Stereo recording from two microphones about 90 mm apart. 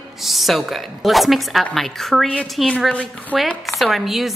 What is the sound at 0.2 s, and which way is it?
A woman's voice, centre (ahead or behind).